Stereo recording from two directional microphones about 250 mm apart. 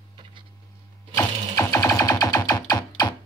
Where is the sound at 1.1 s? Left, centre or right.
Centre.